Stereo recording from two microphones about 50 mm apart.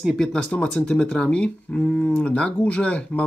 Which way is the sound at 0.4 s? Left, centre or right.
Left.